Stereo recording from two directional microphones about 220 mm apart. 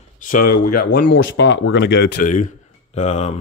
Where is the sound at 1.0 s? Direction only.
60° left (ahead or behind).